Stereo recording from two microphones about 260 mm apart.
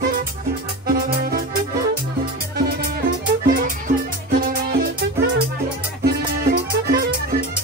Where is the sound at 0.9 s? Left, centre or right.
Right.